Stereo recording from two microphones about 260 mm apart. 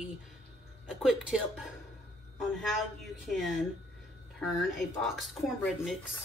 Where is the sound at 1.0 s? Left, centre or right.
Centre.